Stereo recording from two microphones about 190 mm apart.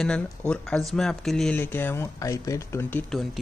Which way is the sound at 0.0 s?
5° left (ahead or behind).